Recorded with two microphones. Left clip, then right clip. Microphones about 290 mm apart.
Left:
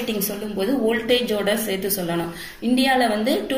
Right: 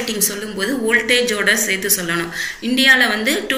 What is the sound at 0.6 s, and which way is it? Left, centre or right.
A woman's voice, left.